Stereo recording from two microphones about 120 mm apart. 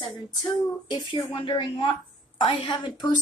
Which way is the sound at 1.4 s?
45° left (ahead or behind).